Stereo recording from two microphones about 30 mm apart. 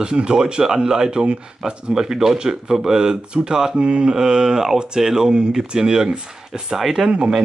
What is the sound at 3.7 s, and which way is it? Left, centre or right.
Mantra, right.